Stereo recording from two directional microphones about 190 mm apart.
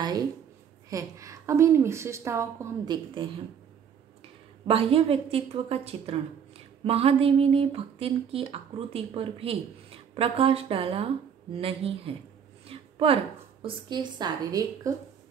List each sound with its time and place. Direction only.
0.8 s a woman's voice: 15° right (ahead or behind)
4.6 s a woman's voice: 30° right (ahead or behind)